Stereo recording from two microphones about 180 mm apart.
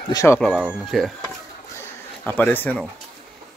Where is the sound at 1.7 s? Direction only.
10° left (ahead or behind).